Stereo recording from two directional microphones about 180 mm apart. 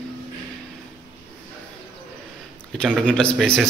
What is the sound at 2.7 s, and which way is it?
Speech, 5° left (ahead or behind).